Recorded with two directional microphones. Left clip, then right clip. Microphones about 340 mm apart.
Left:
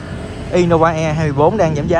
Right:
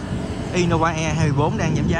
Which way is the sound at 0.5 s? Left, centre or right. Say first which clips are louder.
Left 8 dB; centre.